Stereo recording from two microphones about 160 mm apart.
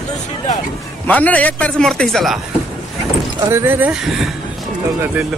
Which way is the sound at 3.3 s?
15° right (ahead or behind).